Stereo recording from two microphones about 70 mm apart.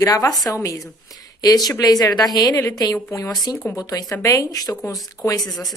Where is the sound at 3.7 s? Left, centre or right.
Left.